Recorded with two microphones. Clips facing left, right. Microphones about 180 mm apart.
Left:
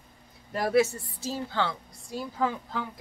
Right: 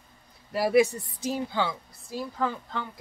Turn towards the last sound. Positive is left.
turn(degrees=0)  # may be behind; listen again after turning